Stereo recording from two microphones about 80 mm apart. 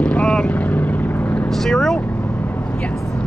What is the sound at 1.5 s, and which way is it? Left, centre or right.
Speech, centre.